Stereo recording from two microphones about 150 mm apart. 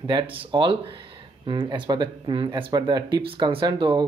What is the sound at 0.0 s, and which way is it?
Speech, 35° right (ahead or behind).